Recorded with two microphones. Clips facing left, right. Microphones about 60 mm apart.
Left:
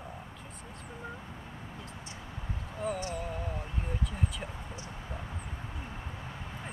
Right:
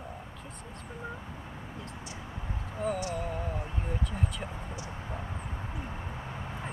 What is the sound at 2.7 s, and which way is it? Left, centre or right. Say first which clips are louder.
Speech: right 2 dB; centre.